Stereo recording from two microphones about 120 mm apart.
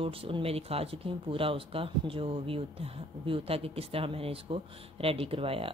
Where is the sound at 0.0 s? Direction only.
50° right (ahead or behind).